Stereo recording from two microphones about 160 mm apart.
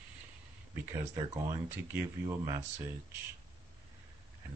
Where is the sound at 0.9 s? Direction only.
20° right (ahead or behind).